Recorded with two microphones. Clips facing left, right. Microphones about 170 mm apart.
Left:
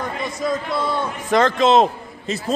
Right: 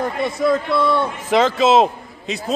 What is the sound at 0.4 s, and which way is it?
Speech, 60° right (ahead or behind).